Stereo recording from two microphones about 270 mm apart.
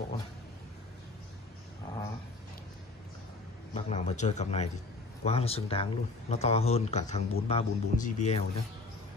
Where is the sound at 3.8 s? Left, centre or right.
Left.